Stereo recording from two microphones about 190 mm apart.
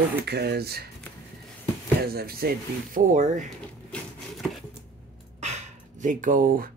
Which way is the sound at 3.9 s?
Centre (ahead or behind).